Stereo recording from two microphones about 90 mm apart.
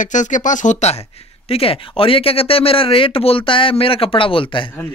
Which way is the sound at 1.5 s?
90° left.